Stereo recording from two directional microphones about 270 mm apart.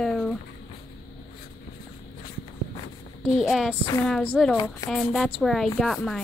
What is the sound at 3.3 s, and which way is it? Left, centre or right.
A woman's voice, centre.